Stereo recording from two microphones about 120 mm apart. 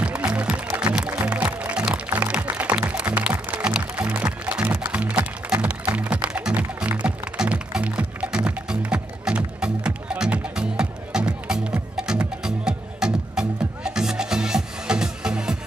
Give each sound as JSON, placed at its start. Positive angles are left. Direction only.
{"t": 0.0, "sound": "music", "side_deg": -10}